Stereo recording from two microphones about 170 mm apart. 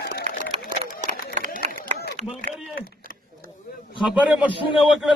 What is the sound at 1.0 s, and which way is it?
Run, 50° right (ahead or behind).